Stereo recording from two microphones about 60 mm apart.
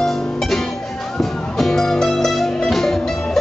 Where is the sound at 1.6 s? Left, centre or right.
Centre.